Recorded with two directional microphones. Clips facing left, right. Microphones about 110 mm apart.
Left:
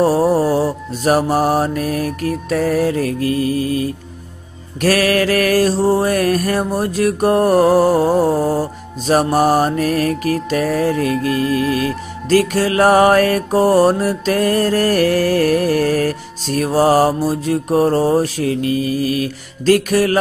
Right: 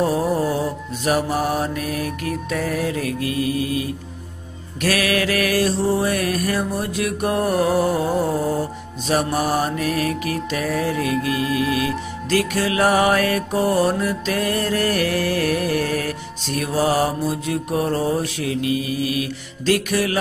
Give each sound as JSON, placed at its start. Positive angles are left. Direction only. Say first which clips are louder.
{"t": 0.0, "sound": "mantra", "louder": "left 6 dB", "side_deg": 35}